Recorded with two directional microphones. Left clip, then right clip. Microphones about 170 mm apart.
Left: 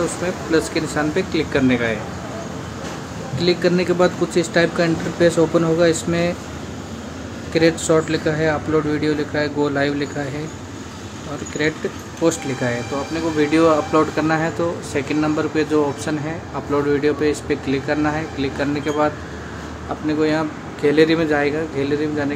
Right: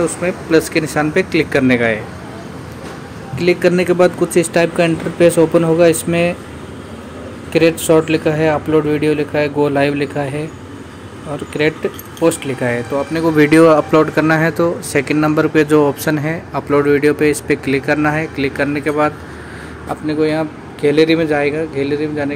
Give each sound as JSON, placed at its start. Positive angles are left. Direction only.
{"t": 0.2, "sound": "speech", "side_deg": -20}
{"t": 3.3, "sound": "speech", "side_deg": -15}
{"t": 7.5, "sound": "speech", "side_deg": -20}
{"t": 12.2, "sound": "speech", "side_deg": -20}
{"t": 13.4, "sound": "speech", "side_deg": -45}
{"t": 13.9, "sound": "speech", "side_deg": -25}